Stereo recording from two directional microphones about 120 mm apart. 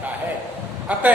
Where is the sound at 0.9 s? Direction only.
10° right (ahead or behind).